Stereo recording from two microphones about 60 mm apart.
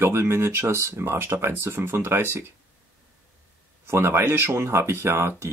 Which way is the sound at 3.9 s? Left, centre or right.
Right.